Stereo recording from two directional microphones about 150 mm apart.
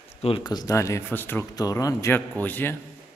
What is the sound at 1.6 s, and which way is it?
A man's voice, 25° left (ahead or behind).